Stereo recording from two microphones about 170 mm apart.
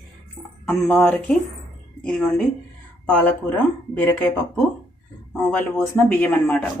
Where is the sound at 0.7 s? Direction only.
10° left (ahead or behind).